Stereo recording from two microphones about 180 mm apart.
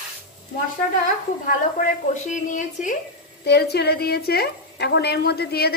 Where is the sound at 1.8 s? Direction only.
45° left (ahead or behind).